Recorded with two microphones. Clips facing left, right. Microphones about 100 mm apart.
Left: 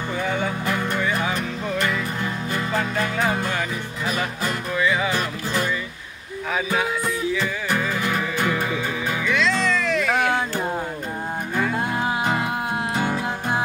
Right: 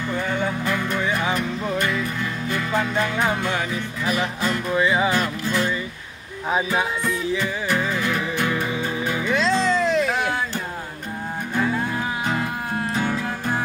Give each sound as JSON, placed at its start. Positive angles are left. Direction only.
{"t": 0.3, "sound": "music", "side_deg": 10}
{"t": 1.3, "sound": "music", "side_deg": -5}
{"t": 4.7, "sound": "music", "side_deg": -30}
{"t": 6.5, "sound": "music", "side_deg": -25}
{"t": 7.7, "sound": "music", "side_deg": 5}
{"t": 9.2, "sound": "music", "side_deg": -35}
{"t": 12.4, "sound": "music", "side_deg": 15}